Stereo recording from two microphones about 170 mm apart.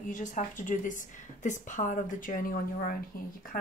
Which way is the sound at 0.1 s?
50° left (ahead or behind).